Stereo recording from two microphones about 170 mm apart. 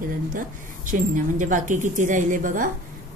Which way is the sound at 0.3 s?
50° right (ahead or behind).